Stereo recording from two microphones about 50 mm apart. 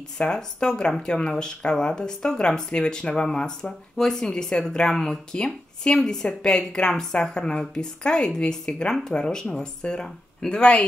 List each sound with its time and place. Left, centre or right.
0.2 s speech: centre